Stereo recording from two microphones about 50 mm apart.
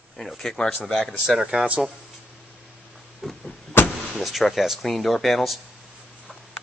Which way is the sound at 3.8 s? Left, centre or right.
Left.